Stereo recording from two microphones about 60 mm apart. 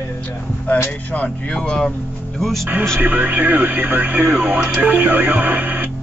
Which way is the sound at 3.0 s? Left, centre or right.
Right.